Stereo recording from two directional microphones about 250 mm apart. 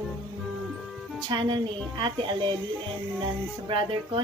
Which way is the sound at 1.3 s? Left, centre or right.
Centre.